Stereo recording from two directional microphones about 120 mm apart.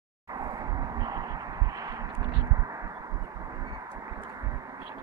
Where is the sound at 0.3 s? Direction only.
30° right (ahead or behind).